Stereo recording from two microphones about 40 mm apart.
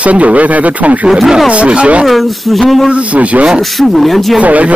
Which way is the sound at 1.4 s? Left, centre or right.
Right.